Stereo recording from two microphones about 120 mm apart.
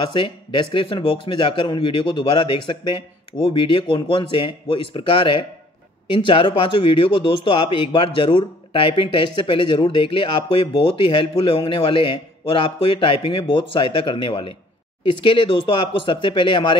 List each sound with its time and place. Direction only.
0.0 s a man's voice: 40° left (ahead or behind)